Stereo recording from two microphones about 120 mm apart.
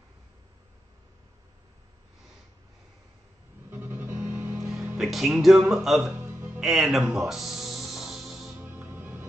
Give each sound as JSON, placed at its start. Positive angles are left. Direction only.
{"t": 3.7, "sound": "music", "side_deg": -15}
{"t": 4.9, "sound": "speech", "side_deg": 0}
{"t": 6.2, "sound": "music", "side_deg": -20}
{"t": 6.6, "sound": "music", "side_deg": 0}
{"t": 8.5, "sound": "music", "side_deg": -15}